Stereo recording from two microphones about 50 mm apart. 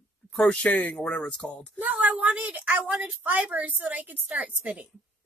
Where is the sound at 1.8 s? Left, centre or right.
Right.